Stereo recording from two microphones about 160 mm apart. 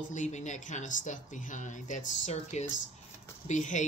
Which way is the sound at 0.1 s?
50° left (ahead or behind).